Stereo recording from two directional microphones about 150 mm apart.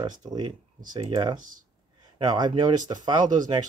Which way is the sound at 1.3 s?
60° right (ahead or behind).